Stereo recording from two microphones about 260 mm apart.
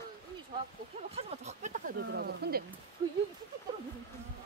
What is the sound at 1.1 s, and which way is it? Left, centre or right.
Speech, right.